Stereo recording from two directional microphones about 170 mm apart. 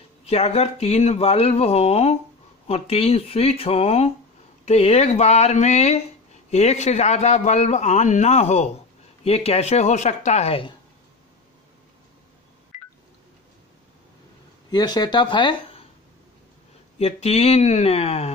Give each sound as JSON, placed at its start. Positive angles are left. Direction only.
{"t": 0.2, "sound": "a man's voice", "side_deg": 35}
{"t": 14.7, "sound": "speech", "side_deg": 25}
{"t": 17.0, "sound": "a man's voice", "side_deg": 40}